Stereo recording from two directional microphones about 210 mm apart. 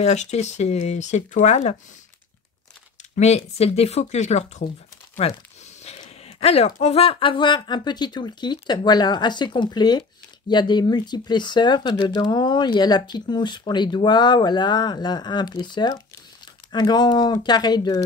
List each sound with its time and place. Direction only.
0.0 s speech: 30° left (ahead or behind)
3.2 s speech: 30° left (ahead or behind)